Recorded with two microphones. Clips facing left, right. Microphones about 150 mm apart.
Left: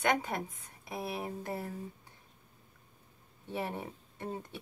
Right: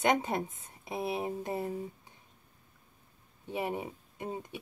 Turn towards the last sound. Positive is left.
turn(degrees=-15)  # may be behind; listen again after turning